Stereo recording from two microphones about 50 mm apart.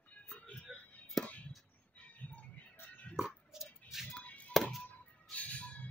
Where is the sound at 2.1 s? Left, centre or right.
Left.